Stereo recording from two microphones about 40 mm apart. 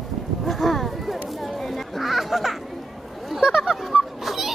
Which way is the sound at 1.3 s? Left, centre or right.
Centre.